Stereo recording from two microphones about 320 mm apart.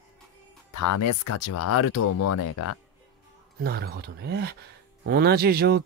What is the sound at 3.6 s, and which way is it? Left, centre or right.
Speech, right.